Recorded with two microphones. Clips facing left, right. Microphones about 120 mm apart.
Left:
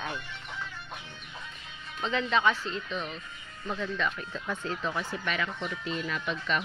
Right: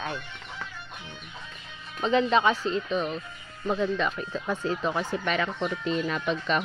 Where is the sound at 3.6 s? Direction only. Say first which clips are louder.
Right 6 dB; 30° right (ahead or behind).